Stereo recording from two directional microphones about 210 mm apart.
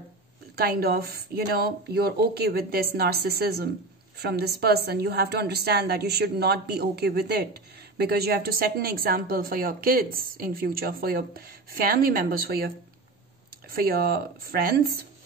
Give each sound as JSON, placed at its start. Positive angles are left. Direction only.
{"t": 0.6, "sound": "speech", "side_deg": -45}